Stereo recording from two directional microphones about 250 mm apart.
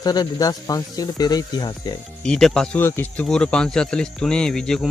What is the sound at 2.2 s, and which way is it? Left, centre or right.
Speech, centre.